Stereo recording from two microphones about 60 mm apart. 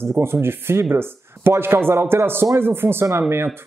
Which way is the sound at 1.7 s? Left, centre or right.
Right.